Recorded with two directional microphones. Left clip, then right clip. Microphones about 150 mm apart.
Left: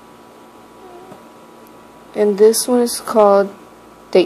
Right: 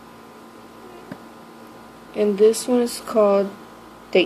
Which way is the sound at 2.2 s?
25° left (ahead or behind).